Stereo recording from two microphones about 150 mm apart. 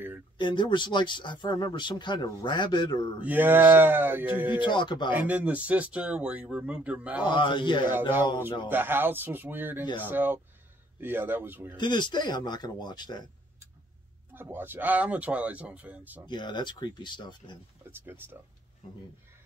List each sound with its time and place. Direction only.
0.4 s speech: 30° left (ahead or behind)
3.3 s speech: 15° right (ahead or behind)
4.5 s speech: 30° left (ahead or behind)
5.1 s speech: 10° right (ahead or behind)
7.2 s speech: 30° left (ahead or behind)
8.6 s speech: 15° right (ahead or behind)
11.7 s speech: 30° left (ahead or behind)
14.3 s speech: 15° right (ahead or behind)
16.3 s speech: 30° left (ahead or behind)
18.0 s speech: 15° right (ahead or behind)